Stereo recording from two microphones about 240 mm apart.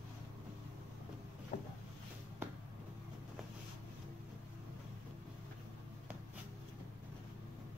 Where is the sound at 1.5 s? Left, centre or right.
Left.